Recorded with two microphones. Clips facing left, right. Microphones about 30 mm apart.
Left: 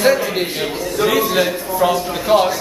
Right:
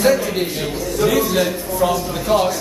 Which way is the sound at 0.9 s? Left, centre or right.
Left.